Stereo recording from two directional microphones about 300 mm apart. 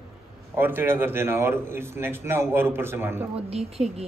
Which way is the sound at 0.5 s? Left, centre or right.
Centre.